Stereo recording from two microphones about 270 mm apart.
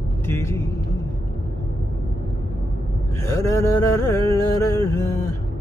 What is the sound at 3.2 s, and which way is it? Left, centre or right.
Music, centre.